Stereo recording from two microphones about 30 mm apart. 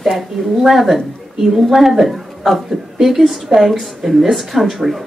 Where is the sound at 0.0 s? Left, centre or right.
Centre.